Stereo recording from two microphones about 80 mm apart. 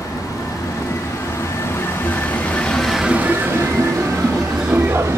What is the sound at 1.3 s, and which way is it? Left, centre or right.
Vehicle, left.